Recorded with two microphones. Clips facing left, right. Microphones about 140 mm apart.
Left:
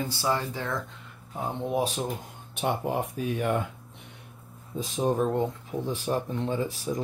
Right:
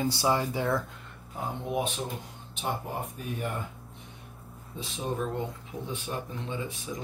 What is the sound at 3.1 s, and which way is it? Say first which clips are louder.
Speech: left 7 dB; 90° left.